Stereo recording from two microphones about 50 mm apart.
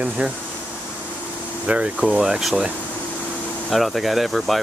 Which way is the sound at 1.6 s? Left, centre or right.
Right.